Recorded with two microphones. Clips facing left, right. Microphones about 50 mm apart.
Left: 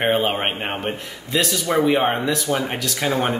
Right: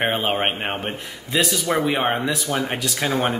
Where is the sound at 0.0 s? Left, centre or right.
Centre.